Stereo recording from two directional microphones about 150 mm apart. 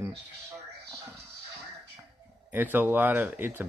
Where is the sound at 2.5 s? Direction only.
15° right (ahead or behind).